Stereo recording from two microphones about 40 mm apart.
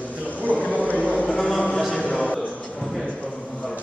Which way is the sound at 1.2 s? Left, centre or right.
Centre.